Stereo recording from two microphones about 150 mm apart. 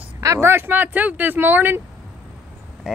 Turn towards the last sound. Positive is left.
turn(degrees=-5)  # may be behind; listen again after turning